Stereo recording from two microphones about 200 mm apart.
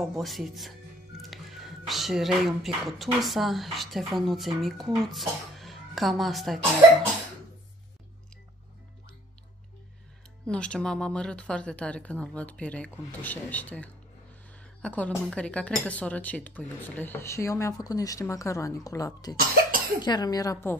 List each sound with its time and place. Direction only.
0.0 s speech: centre (ahead or behind)
10.4 s speech: 5° left (ahead or behind)